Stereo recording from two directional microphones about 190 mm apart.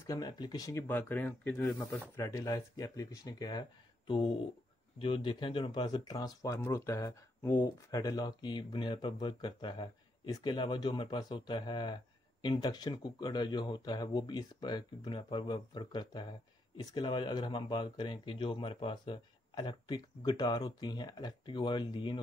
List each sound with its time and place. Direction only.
0.0 s speech: 20° left (ahead or behind)
1.9 s speech: 15° left (ahead or behind)
4.9 s speech: 30° left (ahead or behind)